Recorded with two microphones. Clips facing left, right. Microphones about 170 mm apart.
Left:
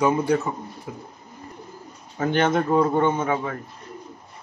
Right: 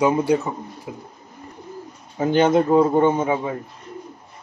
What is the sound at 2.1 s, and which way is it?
A man's voice, 15° right (ahead or behind).